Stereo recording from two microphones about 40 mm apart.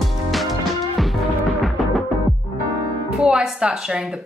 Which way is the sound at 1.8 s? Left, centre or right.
Centre.